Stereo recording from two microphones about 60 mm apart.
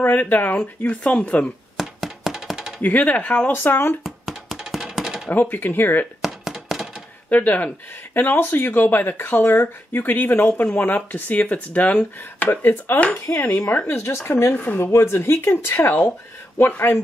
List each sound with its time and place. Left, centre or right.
0.0 s speech: left
0.6 s speech: centre
1.8 s coin: centre
2.8 s speech: left
3.5 s speech: left
4.0 s a sound: centre
5.3 s speech: left
6.2 s thunk: centre
7.2 s speech: left
12.4 s speech: left
14.5 s speech: left
14.9 s speech: left